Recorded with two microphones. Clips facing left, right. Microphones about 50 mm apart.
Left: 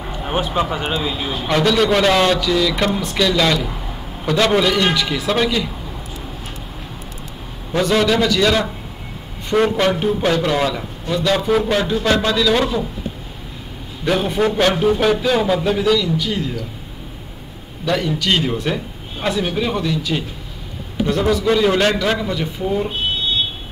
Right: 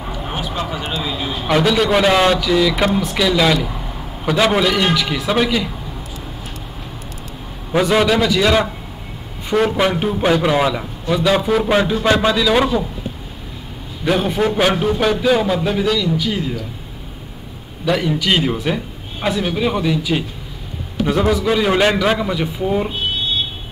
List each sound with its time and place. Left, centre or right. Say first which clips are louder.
0.4 s speech: left 6 dB; left
1.0 s speech: even; centre
1.5 s a man's voice: right 1 dB; centre
7.7 s a man's voice: right 1 dB; centre
14.0 s a man's voice: right 1 dB; centre
17.8 s a man's voice: right 2 dB; centre